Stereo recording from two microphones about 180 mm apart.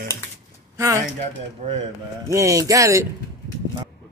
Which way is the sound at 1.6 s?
40° right (ahead or behind).